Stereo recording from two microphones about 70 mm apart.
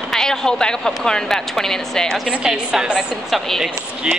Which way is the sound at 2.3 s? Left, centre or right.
Centre.